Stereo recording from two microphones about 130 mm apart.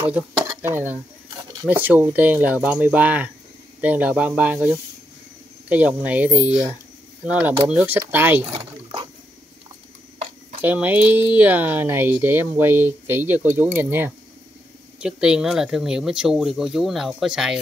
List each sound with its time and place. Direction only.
0.6 s speech: 15° right (ahead or behind)
8.5 s a sound: 50° right (ahead or behind)
10.6 s speech: 10° right (ahead or behind)
15.0 s speech: 5° right (ahead or behind)